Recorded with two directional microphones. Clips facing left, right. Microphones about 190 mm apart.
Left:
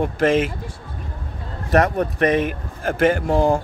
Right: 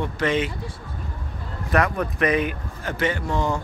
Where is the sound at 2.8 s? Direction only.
50° left (ahead or behind).